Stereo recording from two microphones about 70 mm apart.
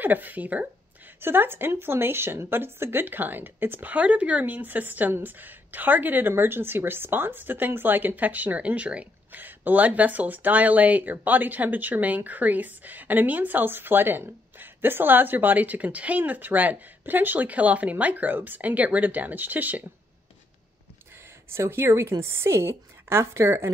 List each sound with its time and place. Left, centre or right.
0.0 s speech: right
21.5 s a woman's voice: right